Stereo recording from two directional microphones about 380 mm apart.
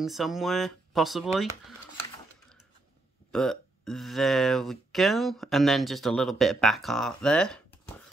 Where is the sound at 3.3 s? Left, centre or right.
Centre.